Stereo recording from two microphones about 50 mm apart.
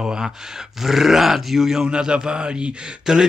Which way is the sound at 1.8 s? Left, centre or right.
Centre.